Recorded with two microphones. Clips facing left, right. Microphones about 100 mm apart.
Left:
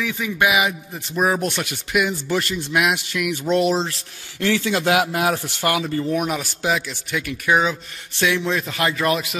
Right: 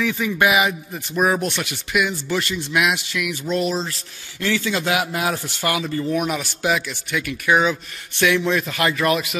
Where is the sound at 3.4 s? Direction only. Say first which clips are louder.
Left 4 dB; 70° left (ahead or behind).